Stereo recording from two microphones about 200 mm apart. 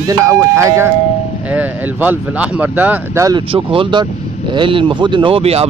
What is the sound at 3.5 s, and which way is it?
Speech, 25° right (ahead or behind).